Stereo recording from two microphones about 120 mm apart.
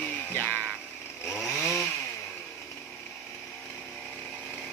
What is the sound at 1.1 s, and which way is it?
Chainsaw, 20° left (ahead or behind).